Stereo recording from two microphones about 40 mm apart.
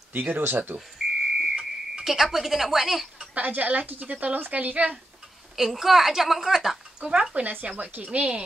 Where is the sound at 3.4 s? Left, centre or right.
Right.